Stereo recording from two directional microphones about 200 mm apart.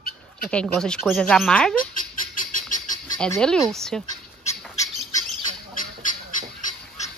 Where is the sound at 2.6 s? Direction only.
40° left (ahead or behind).